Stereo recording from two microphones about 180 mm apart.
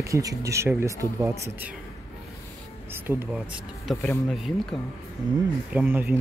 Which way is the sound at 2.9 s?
10° right (ahead or behind).